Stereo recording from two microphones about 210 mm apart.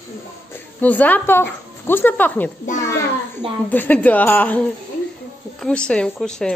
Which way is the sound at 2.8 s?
10° left (ahead or behind).